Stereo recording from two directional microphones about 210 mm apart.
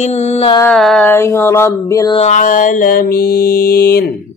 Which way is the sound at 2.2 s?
35° left (ahead or behind).